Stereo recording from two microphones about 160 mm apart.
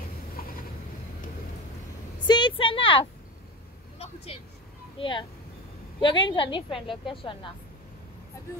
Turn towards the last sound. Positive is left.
turn(degrees=30)  # may be behind; listen again after turning